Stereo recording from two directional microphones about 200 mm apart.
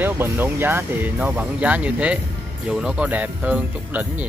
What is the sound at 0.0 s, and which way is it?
Speech, 10° right (ahead or behind).